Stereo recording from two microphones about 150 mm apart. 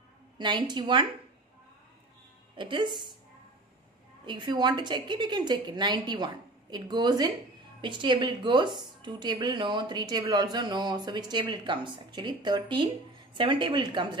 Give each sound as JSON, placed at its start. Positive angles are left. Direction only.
{"t": 0.4, "sound": "a woman's voice", "side_deg": -30}
{"t": 2.5, "sound": "a woman's voice", "side_deg": -30}
{"t": 4.3, "sound": "a woman's voice", "side_deg": -30}